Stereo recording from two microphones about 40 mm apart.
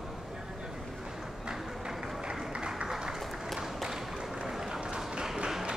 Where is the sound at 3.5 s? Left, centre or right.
Centre.